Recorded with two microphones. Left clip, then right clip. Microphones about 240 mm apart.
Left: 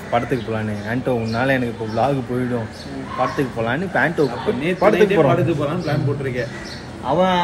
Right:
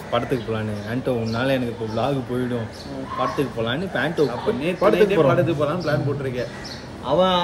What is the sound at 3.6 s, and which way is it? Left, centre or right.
Speech, centre.